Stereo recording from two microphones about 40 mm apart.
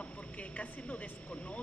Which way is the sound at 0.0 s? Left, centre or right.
Left.